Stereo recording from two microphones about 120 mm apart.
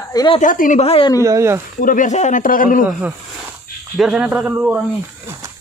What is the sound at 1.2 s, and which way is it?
Speech, 25° right (ahead or behind).